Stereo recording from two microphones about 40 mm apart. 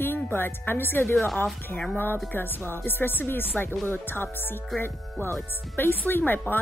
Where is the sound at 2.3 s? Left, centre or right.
Left.